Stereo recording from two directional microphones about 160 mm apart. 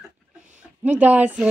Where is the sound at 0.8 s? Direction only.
10° right (ahead or behind).